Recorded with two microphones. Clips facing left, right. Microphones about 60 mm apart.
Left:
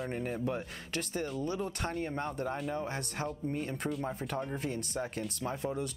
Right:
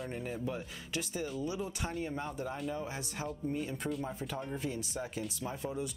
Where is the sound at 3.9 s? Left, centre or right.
Centre.